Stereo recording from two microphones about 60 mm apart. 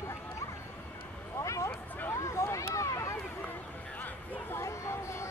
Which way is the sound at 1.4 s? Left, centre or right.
Left.